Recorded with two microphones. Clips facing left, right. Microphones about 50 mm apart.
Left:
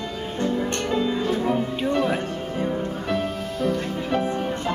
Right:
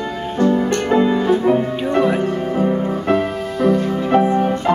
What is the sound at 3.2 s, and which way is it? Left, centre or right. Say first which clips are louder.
Music: right 7 dB; centre.